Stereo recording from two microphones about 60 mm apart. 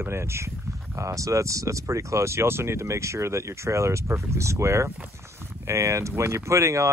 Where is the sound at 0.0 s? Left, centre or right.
Right.